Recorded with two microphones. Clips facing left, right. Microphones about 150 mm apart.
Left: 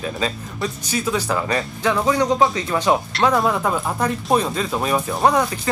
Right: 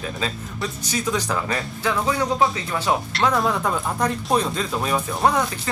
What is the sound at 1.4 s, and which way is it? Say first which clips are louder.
Speech: left 4 dB; 25° left (ahead or behind).